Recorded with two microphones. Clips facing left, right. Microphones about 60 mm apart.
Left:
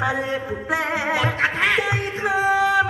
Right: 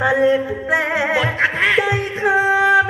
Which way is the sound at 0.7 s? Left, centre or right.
Right.